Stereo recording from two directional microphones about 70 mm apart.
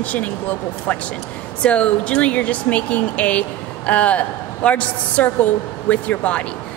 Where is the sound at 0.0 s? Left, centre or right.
Left.